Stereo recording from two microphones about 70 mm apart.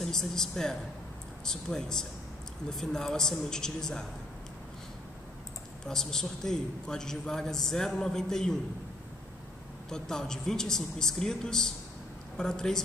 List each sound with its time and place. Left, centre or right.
0.0 s a man's voice: centre
5.9 s a man's voice: centre
9.8 s a man's voice: centre